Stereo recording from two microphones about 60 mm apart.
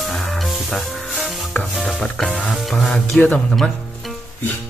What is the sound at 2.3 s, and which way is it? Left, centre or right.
Music, centre.